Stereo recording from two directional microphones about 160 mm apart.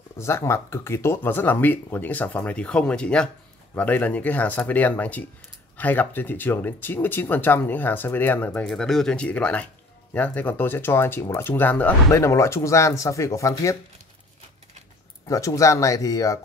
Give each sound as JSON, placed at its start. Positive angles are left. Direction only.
{"t": 0.2, "sound": "speech", "side_deg": 15}
{"t": 15.2, "sound": "speech", "side_deg": 20}